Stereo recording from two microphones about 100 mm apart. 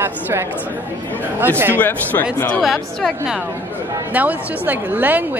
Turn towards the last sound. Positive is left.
turn(degrees=-20)  # may be behind; listen again after turning